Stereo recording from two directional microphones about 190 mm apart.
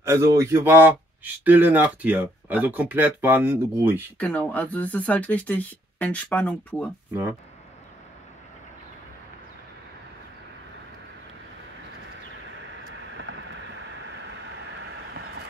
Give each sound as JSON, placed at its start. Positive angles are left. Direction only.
{"t": 0.0, "sound": "a man's voice", "side_deg": -15}
{"t": 4.2, "sound": "speech", "side_deg": 10}
{"t": 12.8, "sound": "vehicle", "side_deg": -75}